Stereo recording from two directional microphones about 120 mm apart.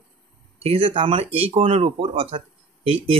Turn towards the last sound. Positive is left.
turn(degrees=-55)  # may be behind; listen again after turning